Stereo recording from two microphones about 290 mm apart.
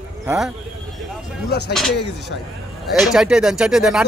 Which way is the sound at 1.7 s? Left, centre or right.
Centre.